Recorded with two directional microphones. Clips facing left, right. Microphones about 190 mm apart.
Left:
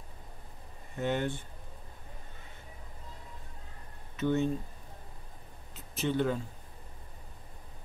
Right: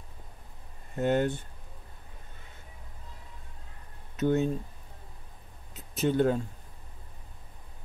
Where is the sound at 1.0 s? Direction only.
45° right (ahead or behind).